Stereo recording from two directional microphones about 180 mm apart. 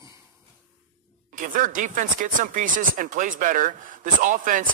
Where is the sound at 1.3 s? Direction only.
45° right (ahead or behind).